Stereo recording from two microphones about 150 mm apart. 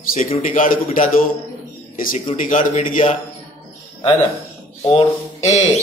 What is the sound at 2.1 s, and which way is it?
Speech, 50° left (ahead or behind).